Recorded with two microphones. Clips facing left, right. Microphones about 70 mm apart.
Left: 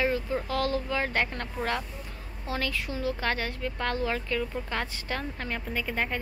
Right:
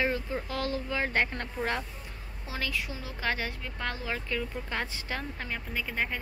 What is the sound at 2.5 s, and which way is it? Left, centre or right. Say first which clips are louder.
A woman's voice: left 3 dB; centre.